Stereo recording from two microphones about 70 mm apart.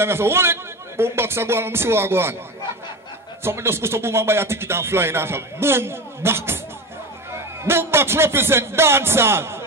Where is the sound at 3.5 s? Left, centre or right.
Right.